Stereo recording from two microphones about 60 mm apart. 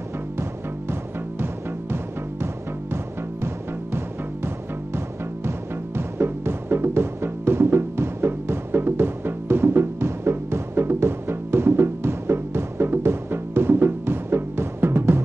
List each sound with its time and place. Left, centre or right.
4.9 s music: right